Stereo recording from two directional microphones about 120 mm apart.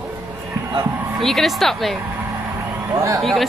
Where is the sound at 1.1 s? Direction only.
Centre (ahead or behind).